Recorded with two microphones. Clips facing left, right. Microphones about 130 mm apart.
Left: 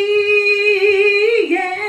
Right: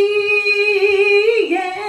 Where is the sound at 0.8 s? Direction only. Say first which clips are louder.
Right 1 dB; 15° right (ahead or behind).